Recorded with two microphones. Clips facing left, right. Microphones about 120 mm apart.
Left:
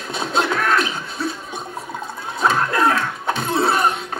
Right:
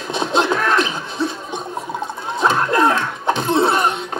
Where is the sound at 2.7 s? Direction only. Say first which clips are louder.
Right 2 dB; 25° right (ahead or behind).